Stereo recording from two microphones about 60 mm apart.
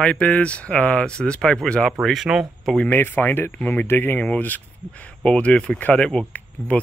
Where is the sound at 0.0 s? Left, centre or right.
Centre.